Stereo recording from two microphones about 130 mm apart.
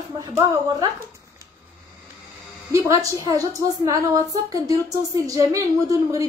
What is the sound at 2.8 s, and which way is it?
A woman's voice, 25° right (ahead or behind).